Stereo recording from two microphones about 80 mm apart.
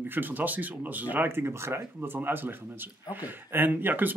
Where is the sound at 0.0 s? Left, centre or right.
Right.